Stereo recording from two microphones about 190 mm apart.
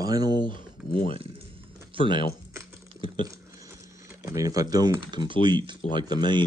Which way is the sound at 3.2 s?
15° right (ahead or behind).